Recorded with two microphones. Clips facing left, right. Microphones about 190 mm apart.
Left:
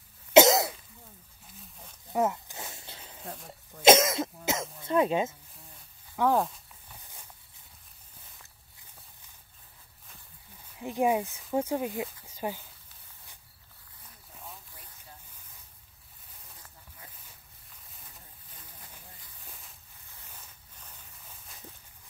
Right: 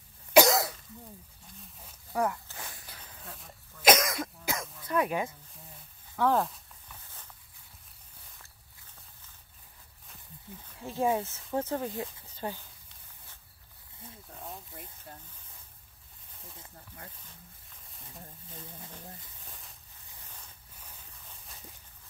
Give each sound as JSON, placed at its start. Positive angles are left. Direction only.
{"t": 0.3, "sound": "cough", "side_deg": 20}
{"t": 2.1, "sound": "a sound", "side_deg": 20}
{"t": 3.7, "sound": "cough", "side_deg": 25}
{"t": 4.5, "sound": "throat clearing", "side_deg": 25}
{"t": 6.3, "sound": "speech", "side_deg": 0}
{"t": 10.8, "sound": "speech", "side_deg": 15}
{"t": 14.5, "sound": "a sound", "side_deg": -50}
{"t": 16.7, "sound": "snake", "side_deg": -55}